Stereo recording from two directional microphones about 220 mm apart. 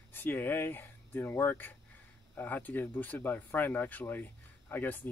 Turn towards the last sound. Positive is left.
turn(degrees=10)  # may be behind; listen again after turning